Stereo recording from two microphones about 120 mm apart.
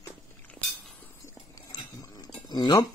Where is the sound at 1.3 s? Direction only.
30° left (ahead or behind).